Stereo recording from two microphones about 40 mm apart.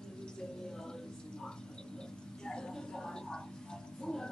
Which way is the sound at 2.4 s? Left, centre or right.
Centre.